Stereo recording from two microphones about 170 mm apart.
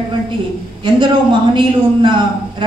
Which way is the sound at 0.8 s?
30° right (ahead or behind).